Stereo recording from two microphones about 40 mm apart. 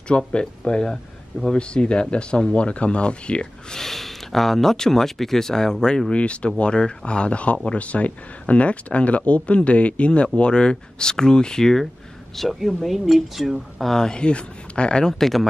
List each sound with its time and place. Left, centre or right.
0.3 s speech: left
3.7 s speech: centre
6.1 s speech: left; by 11.9 s centre
12.4 s speech: centre
13.9 s speech: centre
15.1 s speech: centre